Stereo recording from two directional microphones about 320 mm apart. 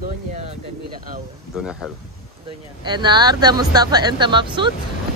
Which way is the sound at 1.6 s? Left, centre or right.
Centre.